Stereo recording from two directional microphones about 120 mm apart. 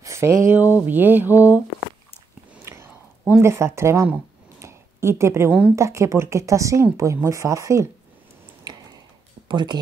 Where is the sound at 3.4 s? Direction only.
20° right (ahead or behind).